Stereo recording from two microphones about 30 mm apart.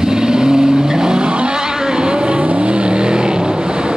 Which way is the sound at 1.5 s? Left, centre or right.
Right.